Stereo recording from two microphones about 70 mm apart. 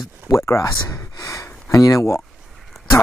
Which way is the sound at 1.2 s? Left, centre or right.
Left.